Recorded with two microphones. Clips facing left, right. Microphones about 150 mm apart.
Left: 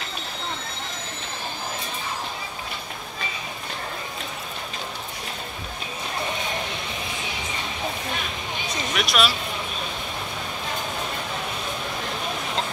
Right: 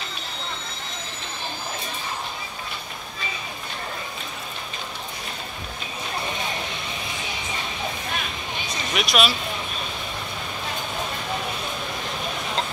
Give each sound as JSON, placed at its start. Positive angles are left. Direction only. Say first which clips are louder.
{"t": 8.9, "sound": "speech", "louder": "right 1 dB", "side_deg": -20}